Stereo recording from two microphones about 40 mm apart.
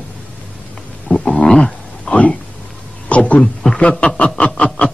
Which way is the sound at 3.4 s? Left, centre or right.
Centre.